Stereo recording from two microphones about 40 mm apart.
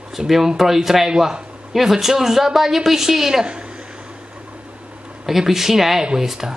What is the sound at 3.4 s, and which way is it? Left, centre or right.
Speech, right.